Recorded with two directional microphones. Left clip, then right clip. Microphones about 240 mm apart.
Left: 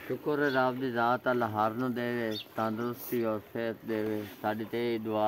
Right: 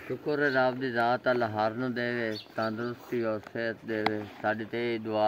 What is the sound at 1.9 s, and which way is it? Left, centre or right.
Speech, centre.